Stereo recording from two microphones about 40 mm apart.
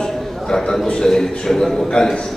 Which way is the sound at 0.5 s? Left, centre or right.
Centre.